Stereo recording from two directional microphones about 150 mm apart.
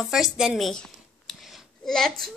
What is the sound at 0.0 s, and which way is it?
Speech, centre (ahead or behind).